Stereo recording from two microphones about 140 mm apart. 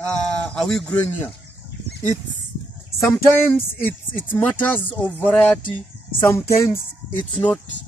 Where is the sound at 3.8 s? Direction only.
15° left (ahead or behind).